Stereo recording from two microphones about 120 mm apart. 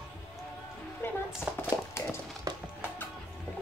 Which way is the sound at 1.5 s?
15° right (ahead or behind).